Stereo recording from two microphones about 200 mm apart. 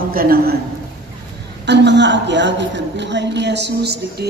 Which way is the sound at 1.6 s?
60° right (ahead or behind).